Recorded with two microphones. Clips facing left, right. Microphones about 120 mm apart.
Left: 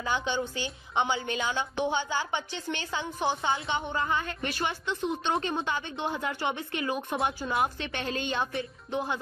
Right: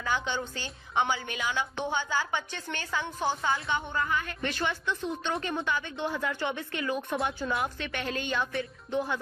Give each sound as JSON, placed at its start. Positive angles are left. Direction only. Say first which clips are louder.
{"t": 0.0, "sound": "a woman's voice", "louder": "left 1 dB", "side_deg": 20}